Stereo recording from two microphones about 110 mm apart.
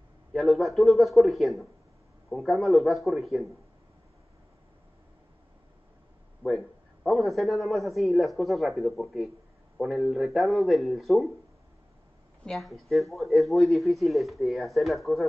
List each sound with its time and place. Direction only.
0.3 s a man's voice: centre (ahead or behind)
6.4 s a man's voice: centre (ahead or behind)
12.4 s a man's voice: centre (ahead or behind)